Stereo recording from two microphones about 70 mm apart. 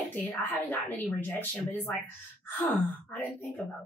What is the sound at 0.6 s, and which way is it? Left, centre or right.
A woman's voice, left.